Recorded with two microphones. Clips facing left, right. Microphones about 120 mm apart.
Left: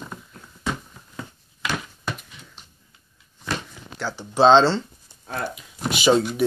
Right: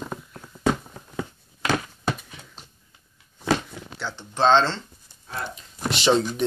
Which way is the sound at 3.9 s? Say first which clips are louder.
Left 5 dB; 5° left (ahead or behind).